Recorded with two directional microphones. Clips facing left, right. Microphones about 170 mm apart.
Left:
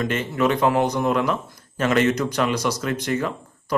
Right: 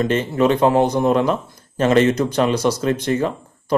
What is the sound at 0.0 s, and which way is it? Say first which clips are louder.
Speech: right 5 dB; 30° right (ahead or behind).